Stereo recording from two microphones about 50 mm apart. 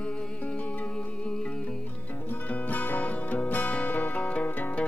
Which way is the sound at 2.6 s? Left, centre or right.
Left.